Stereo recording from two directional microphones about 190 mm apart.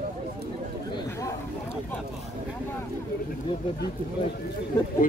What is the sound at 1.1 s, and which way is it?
Chatter, 15° left (ahead or behind).